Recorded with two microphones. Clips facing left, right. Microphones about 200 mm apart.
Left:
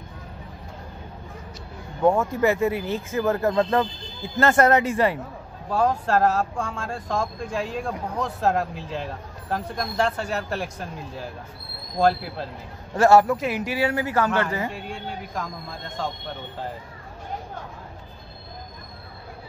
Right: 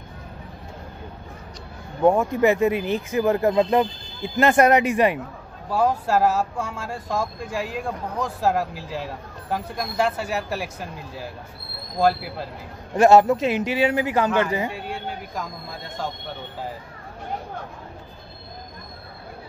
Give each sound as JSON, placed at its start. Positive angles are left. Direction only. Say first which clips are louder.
{"t": 2.0, "sound": "speech", "louder": "right 2 dB", "side_deg": -15}
{"t": 12.9, "sound": "a man's voice", "louder": "right 2 dB", "side_deg": -20}
{"t": 14.7, "sound": "a man's voice", "louder": "right 2 dB", "side_deg": -5}